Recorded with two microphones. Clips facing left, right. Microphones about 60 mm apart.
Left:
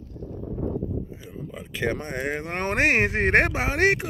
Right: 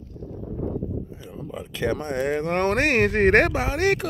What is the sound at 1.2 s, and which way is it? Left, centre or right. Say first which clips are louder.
Speech: right 2 dB; left.